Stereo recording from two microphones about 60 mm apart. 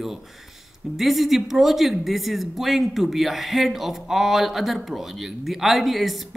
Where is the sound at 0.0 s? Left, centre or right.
Centre.